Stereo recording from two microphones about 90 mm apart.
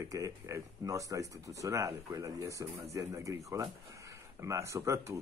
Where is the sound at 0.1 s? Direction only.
35° right (ahead or behind).